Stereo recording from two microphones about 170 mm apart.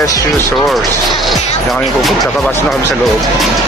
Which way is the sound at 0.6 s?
Centre (ahead or behind).